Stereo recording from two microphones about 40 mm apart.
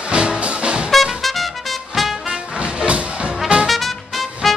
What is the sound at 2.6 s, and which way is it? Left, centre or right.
Music, right.